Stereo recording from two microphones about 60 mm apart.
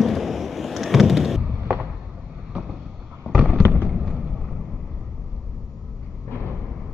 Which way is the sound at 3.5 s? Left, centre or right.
Right.